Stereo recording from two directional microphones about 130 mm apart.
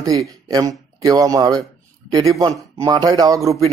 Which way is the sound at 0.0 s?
30° right (ahead or behind).